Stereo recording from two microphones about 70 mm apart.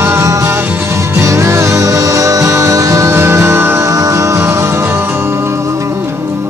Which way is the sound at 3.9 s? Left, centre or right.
Right.